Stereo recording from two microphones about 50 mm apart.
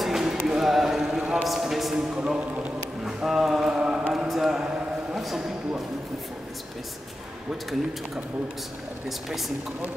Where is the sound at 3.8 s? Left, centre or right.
Centre.